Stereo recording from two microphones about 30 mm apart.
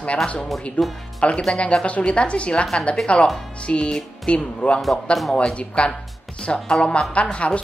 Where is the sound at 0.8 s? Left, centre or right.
Left.